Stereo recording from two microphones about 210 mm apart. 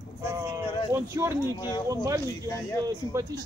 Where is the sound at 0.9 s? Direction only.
15° right (ahead or behind).